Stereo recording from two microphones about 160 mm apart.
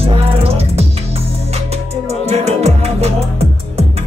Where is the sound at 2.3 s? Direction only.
40° right (ahead or behind).